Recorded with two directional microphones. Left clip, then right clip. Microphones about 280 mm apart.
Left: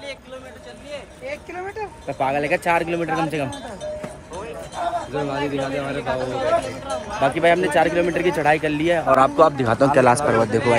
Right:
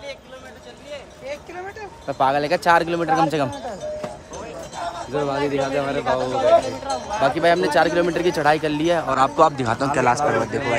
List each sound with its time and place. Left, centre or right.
1.2 s a sound: centre
2.0 s speech: centre
5.1 s speech: right
7.2 s speech: centre